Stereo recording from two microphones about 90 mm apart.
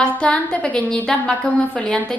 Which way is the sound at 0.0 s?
10° left (ahead or behind).